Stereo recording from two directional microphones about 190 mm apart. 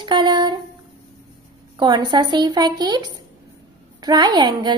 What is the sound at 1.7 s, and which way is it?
A woman's voice, 20° right (ahead or behind).